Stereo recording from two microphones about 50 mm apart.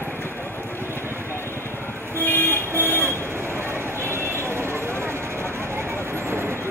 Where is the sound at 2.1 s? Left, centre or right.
Left.